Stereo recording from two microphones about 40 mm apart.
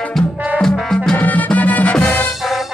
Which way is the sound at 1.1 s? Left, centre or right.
Left.